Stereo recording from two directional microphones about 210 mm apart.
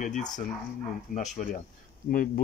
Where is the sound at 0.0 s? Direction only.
35° left (ahead or behind).